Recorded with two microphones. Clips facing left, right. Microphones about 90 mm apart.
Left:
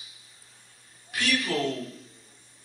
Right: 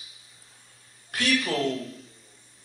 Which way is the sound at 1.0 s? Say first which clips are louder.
Right 2 dB; 40° right (ahead or behind).